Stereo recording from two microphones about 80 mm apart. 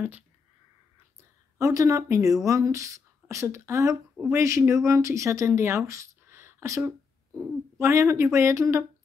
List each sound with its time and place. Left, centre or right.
1.6 s speech: right
7.8 s speech: right